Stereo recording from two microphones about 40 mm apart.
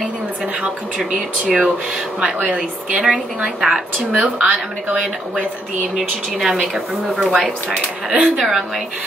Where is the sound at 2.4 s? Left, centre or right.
Right.